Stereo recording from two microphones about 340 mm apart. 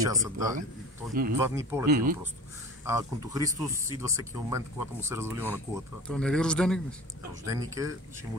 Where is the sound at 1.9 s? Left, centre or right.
Right.